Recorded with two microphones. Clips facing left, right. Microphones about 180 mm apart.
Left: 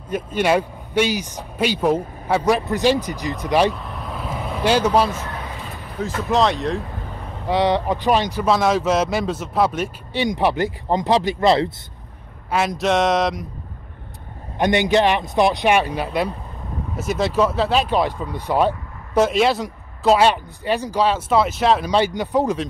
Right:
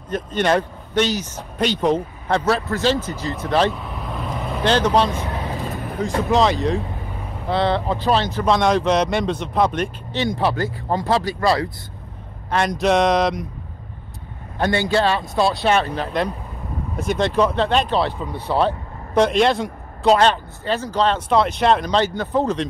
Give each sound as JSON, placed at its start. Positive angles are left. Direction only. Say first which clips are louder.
{"t": 0.1, "sound": "speech", "louder": "even", "side_deg": 10}
{"t": 3.7, "sound": "vehicle", "louder": "right 1 dB", "side_deg": 0}
{"t": 6.0, "sound": "speech", "louder": "right 1 dB", "side_deg": 5}
{"t": 7.4, "sound": "speech", "louder": "left 1 dB", "side_deg": 15}
{"t": 12.4, "sound": "speech", "louder": "right 1 dB", "side_deg": 5}
{"t": 14.6, "sound": "speech", "louder": "left 2 dB", "side_deg": 20}